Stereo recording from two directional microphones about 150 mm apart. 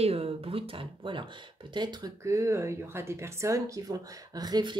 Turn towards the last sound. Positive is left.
turn(degrees=-30)  # may be behind; listen again after turning